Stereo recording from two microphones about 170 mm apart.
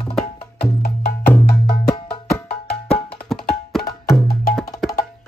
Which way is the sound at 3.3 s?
Centre (ahead or behind).